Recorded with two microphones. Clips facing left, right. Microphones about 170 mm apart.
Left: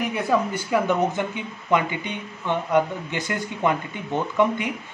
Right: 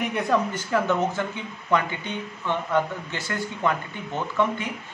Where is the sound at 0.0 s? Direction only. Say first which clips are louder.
Left 1 dB; centre (ahead or behind).